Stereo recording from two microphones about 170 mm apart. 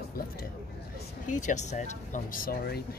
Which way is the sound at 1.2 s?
45° left (ahead or behind).